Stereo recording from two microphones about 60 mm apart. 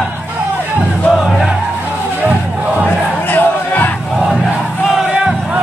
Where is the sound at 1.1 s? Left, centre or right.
Centre.